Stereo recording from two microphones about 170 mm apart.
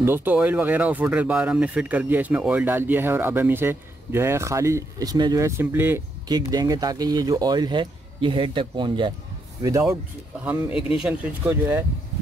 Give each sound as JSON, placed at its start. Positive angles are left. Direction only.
{"t": 0.0, "sound": "speech", "side_deg": -10}
{"t": 10.4, "sound": "speech", "side_deg": -10}